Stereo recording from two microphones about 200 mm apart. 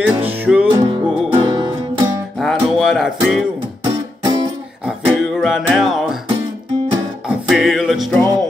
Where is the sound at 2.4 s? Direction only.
Centre (ahead or behind).